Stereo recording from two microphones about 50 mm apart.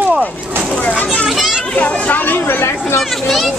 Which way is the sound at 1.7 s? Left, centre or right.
Left.